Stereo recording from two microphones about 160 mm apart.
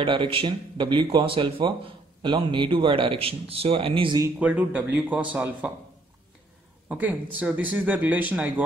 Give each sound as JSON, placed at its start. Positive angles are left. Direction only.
{"t": 0.0, "sound": "a man's voice", "side_deg": -30}
{"t": 4.4, "sound": "speech", "side_deg": -10}
{"t": 6.9, "sound": "speech", "side_deg": -10}